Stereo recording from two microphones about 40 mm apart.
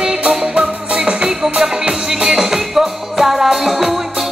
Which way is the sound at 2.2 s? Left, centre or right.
Centre.